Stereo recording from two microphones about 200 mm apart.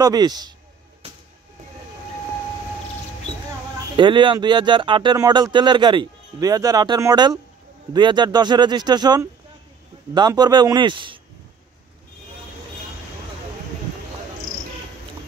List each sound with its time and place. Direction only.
0.0 s speech: 20° right (ahead or behind)
3.9 s speech: 25° right (ahead or behind)